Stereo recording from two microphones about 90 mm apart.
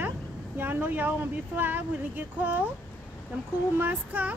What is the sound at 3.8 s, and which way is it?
Speech, 20° right (ahead or behind).